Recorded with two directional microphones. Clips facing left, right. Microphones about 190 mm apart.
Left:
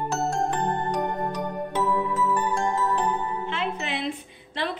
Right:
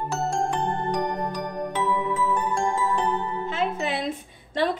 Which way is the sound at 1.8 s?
Centre (ahead or behind).